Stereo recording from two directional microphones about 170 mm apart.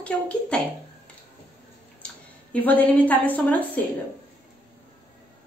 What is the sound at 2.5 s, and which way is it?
Speech, 10° left (ahead or behind).